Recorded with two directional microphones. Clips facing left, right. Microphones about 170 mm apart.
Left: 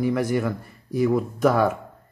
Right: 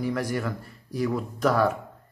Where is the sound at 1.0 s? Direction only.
5° left (ahead or behind).